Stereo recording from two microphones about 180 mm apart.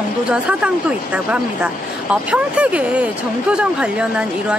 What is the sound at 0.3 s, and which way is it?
Speech, 5° right (ahead or behind).